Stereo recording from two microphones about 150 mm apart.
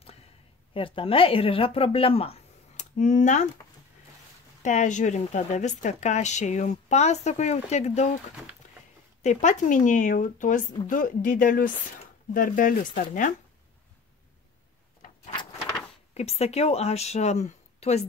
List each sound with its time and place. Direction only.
0.7 s speech: 35° left (ahead or behind); by 3.4 s 55° left (ahead or behind)
4.6 s a woman's voice: 55° left (ahead or behind)
9.2 s speech: 50° left (ahead or behind)
16.2 s a woman's voice: 45° left (ahead or behind)